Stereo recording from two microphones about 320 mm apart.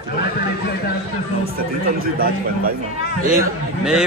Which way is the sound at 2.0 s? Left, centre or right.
Right.